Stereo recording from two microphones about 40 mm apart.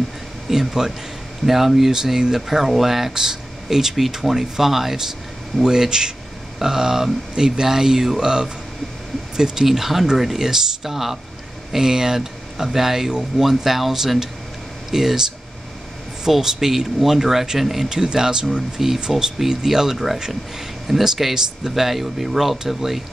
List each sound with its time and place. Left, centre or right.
0.5 s speech: centre
5.6 s speech: centre
16.3 s speech: centre
17.8 s speech: centre